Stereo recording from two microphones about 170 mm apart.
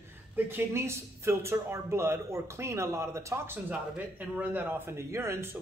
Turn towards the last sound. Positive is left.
turn(degrees=-15)  # may be behind; listen again after turning